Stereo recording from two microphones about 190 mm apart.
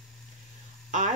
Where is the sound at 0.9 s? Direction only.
40° right (ahead or behind).